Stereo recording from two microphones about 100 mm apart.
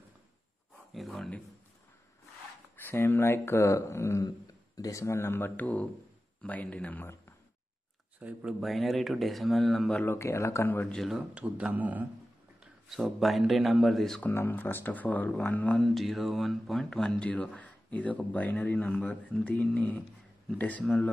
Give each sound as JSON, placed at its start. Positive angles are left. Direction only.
{"t": 0.9, "sound": "speech", "side_deg": 0}
{"t": 2.7, "sound": "speech", "side_deg": 20}
{"t": 8.2, "sound": "speech", "side_deg": -15}
{"t": 8.5, "sound": "speech", "side_deg": 0}
{"t": 9.9, "sound": "speech", "side_deg": 25}
{"t": 10.9, "sound": "speech", "side_deg": 0}
{"t": 12.9, "sound": "speech", "side_deg": 0}
{"t": 14.2, "sound": "speech", "side_deg": 20}
{"t": 15.8, "sound": "speech", "side_deg": 0}